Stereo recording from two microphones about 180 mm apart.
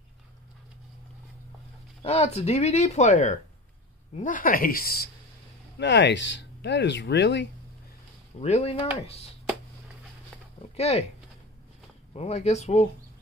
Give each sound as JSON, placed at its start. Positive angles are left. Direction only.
{"t": 2.0, "sound": "speech", "side_deg": 35}
{"t": 5.8, "sound": "speech", "side_deg": 75}
{"t": 8.4, "sound": "speech", "side_deg": 35}
{"t": 10.8, "sound": "speech", "side_deg": 35}
{"t": 12.1, "sound": "speech", "side_deg": 35}